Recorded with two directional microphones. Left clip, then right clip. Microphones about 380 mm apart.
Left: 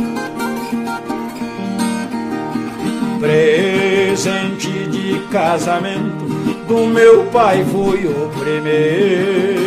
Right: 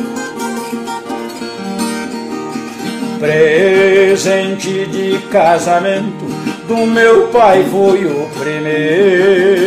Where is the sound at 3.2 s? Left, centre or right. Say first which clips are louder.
Right 3 dB; centre.